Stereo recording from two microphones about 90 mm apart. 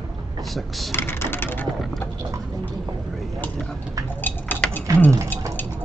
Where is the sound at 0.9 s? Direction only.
25° left (ahead or behind).